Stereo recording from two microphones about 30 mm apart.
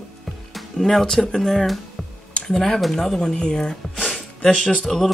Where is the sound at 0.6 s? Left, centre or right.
Centre.